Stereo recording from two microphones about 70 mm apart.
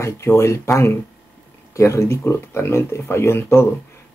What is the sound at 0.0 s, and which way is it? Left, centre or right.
Speech, left.